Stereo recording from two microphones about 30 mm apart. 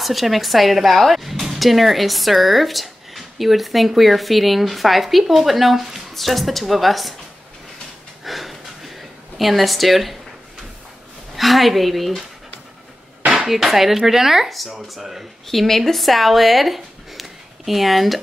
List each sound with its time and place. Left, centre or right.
0.0 s speech: centre
8.2 s snort: centre
9.4 s speech: centre
11.3 s speech: centre
13.4 s a sound: centre
13.7 s speech: centre
15.4 s speech: centre